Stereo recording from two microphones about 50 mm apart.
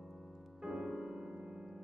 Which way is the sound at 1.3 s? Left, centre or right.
Centre.